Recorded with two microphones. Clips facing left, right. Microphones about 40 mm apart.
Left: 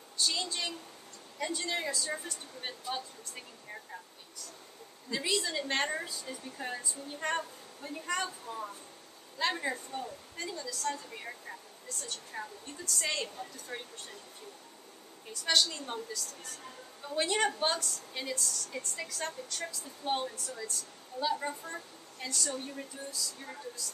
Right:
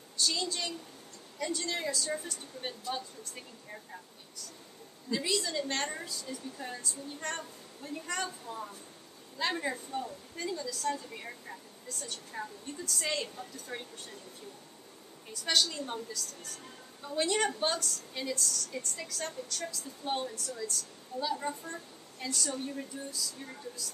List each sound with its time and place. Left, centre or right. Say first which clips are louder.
0.2 s a woman's voice: right 1 dB; centre
15.3 s a woman's voice: left 1 dB; centre